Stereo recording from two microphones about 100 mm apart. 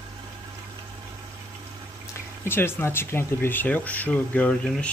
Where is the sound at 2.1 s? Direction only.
25° left (ahead or behind).